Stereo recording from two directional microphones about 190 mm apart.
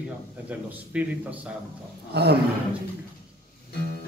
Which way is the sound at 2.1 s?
60° right (ahead or behind).